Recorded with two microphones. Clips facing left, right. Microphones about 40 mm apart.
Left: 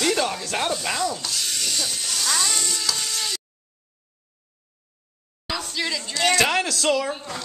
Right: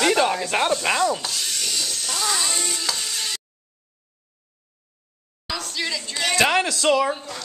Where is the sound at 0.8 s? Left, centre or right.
Right.